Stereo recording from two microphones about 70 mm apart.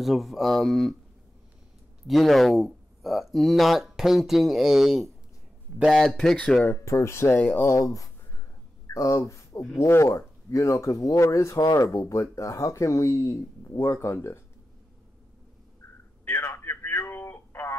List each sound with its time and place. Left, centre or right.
0.0 s speech: centre
2.0 s speech: centre
6.7 s speech: left
7.3 s speech: left
7.6 s speech: left
8.8 s a sound: left
9.8 s speech: left
16.3 s radio: left